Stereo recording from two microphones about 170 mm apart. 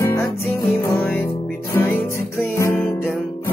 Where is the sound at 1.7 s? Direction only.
15° left (ahead or behind).